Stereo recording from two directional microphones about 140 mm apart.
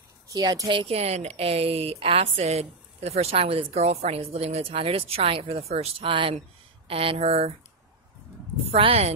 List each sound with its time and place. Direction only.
0.3 s speech: 25° right (ahead or behind); by 7.5 s 45° right (ahead or behind)
8.7 s speech: 45° right (ahead or behind)